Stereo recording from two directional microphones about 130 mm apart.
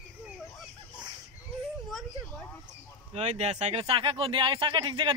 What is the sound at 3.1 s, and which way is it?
Speech, 55° right (ahead or behind).